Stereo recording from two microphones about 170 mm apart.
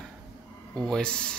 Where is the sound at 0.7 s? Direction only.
5° left (ahead or behind).